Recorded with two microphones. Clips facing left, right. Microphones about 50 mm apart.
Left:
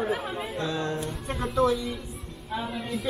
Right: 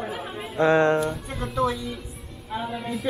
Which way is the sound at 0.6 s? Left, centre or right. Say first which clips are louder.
Right 13 dB; right.